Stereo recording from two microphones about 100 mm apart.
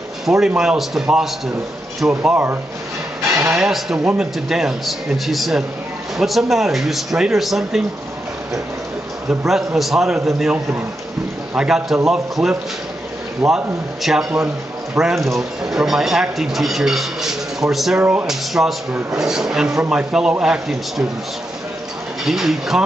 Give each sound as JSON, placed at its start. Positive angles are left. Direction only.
{"t": 0.6, "sound": "speech", "side_deg": -5}
{"t": 2.3, "sound": "speech", "side_deg": -20}
{"t": 3.5, "sound": "speech", "side_deg": -5}
{"t": 9.3, "sound": "speech", "side_deg": -5}
{"t": 17.9, "sound": "speech", "side_deg": -15}
{"t": 18.2, "sound": "speech", "side_deg": -5}
{"t": 22.2, "sound": "speech", "side_deg": -5}